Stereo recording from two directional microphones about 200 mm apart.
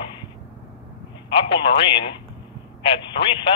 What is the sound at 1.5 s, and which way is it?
Speech, 25° left (ahead or behind).